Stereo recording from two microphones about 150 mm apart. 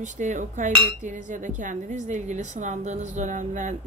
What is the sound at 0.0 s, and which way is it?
Cutlery, 55° right (ahead or behind).